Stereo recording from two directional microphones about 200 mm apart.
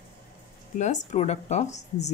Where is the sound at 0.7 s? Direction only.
35° left (ahead or behind).